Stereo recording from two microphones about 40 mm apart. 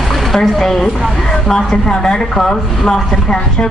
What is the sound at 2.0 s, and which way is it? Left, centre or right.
Speech, centre.